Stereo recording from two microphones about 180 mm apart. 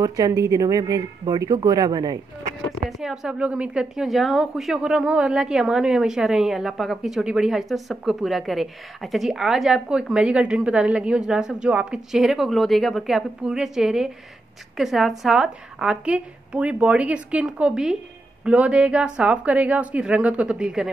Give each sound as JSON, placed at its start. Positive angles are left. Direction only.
{"t": 0.0, "sound": "speech", "side_deg": -20}
{"t": 2.9, "sound": "a woman's voice", "side_deg": 0}